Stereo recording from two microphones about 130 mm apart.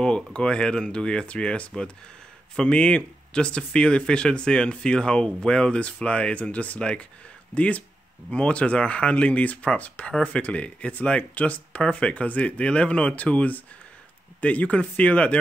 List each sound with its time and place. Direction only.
0.0 s speech: 5° left (ahead or behind)